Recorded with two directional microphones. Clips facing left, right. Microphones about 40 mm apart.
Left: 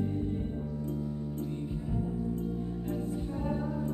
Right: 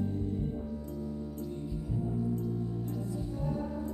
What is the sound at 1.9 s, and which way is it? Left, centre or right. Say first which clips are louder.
Music: right 1 dB; left.